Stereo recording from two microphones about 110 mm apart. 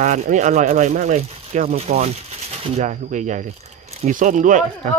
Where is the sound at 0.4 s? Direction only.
90° right.